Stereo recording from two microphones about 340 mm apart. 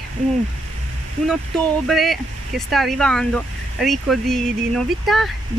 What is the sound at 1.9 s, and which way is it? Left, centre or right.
Speech, centre.